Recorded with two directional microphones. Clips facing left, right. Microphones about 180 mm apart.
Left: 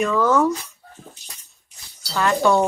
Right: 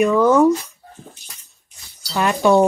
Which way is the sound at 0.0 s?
15° right (ahead or behind).